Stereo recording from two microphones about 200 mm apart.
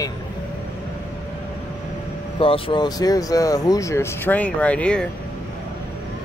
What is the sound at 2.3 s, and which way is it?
Speech, 25° left (ahead or behind).